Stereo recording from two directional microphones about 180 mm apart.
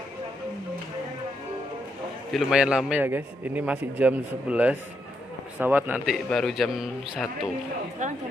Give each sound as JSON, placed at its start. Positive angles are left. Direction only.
{"t": 2.3, "sound": "a man's voice", "side_deg": -5}
{"t": 8.0, "sound": "speech", "side_deg": -40}